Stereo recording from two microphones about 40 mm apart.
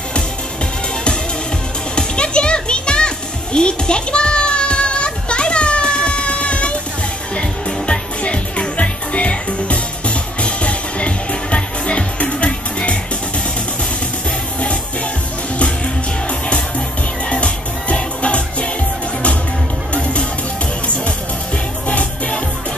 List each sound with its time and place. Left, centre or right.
2.0 s music: left
3.5 s children playing: left
7.3 s music: left
16.3 s music: left
19.9 s music: left
21.8 s music: left